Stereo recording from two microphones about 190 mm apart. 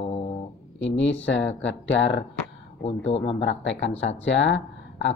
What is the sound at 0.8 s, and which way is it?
Speech, 70° left (ahead or behind).